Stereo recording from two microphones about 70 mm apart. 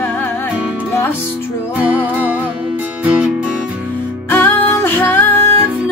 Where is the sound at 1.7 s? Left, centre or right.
Right.